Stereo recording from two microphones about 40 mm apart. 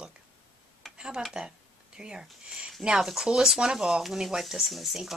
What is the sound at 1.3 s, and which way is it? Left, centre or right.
Speech, centre.